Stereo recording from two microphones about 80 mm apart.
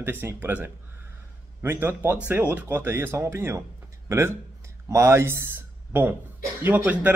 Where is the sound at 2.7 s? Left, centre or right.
Right.